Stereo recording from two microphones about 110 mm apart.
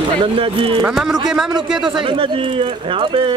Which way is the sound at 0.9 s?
5° right (ahead or behind).